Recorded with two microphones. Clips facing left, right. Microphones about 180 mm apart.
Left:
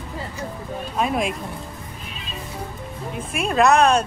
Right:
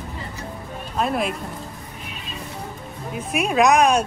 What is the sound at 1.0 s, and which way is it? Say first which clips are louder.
Speech: even; centre (ahead or behind).